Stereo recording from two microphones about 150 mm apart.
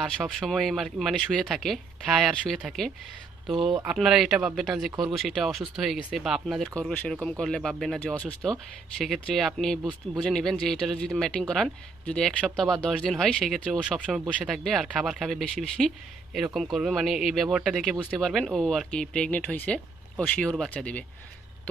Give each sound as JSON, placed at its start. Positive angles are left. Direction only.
{"t": 0.0, "sound": "speech", "side_deg": -5}
{"t": 3.5, "sound": "speech", "side_deg": -35}
{"t": 3.8, "sound": "speech", "side_deg": -5}